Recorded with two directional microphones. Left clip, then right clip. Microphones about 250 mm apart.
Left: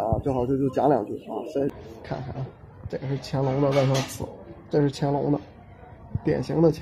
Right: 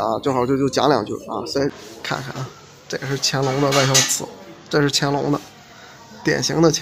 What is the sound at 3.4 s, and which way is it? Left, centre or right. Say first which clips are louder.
Speech: right 3 dB; centre.